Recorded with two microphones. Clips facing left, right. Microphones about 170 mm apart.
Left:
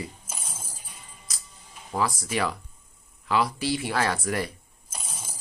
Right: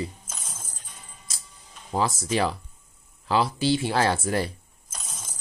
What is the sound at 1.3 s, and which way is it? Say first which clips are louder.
Music: right 2 dB; 25° right (ahead or behind).